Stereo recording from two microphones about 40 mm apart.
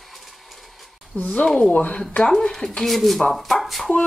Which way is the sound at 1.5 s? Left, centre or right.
Left.